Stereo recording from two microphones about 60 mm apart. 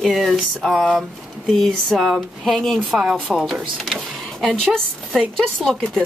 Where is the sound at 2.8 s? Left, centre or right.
Centre.